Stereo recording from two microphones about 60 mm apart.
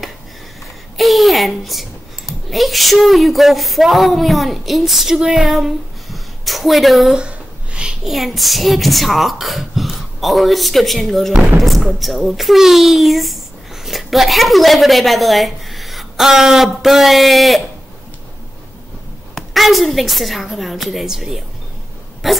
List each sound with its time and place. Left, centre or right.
0.9 s a woman's voice: centre
7.2 s a sound: centre
8.0 s speech: centre
19.3 s speech: centre